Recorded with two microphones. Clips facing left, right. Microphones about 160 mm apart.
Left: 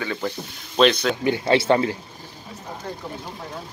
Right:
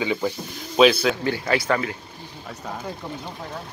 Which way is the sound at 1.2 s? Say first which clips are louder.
Left 4 dB; 25° left (ahead or behind).